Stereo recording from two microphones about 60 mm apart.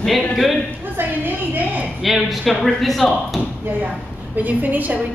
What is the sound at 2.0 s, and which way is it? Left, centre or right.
Speech, centre.